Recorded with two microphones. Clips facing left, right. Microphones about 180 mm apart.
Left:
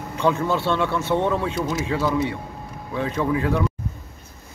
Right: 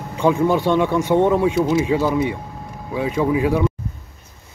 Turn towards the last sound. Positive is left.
turn(degrees=-15)  # may be behind; listen again after turning